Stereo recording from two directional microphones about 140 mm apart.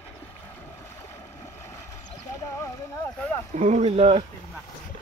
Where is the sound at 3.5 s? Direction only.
55° right (ahead or behind).